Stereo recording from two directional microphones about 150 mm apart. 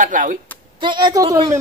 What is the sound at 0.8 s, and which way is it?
Speech, 30° right (ahead or behind).